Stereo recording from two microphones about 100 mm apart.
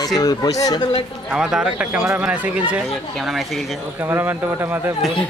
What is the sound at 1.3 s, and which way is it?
Speech, 5° right (ahead or behind).